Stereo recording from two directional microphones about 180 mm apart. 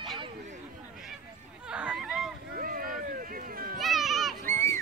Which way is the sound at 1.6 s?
5° right (ahead or behind).